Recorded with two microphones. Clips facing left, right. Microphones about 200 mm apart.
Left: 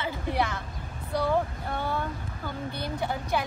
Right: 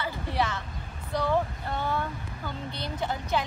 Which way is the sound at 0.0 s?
15° left (ahead or behind).